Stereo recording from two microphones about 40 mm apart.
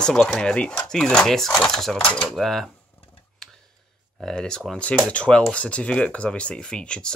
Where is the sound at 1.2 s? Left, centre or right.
Centre.